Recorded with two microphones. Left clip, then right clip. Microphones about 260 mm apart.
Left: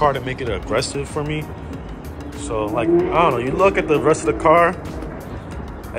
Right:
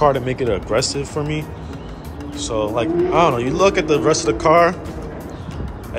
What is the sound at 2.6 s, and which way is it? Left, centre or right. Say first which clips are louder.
Speech: left 1 dB; centre.